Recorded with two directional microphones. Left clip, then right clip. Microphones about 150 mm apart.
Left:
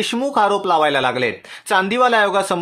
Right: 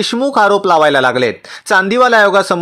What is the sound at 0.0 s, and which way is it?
Speech, 30° right (ahead or behind).